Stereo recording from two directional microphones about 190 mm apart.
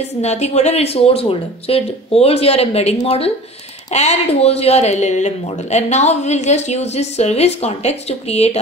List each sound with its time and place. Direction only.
0.2 s speech: 35° left (ahead or behind)